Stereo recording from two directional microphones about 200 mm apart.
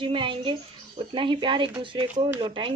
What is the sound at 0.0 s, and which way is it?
Speech, 25° right (ahead or behind).